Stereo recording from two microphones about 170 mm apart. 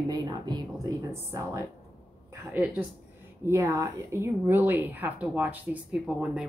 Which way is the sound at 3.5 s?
15° right (ahead or behind).